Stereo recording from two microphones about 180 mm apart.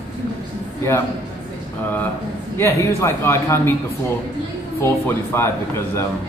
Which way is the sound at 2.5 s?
15° left (ahead or behind).